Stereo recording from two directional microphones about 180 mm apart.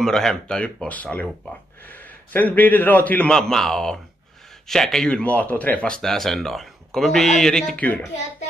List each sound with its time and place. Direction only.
0.0 s speech: 5° left (ahead or behind)
2.3 s a man's voice: 10° left (ahead or behind)